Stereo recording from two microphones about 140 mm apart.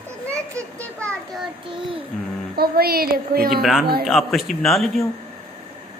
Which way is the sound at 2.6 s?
90° right.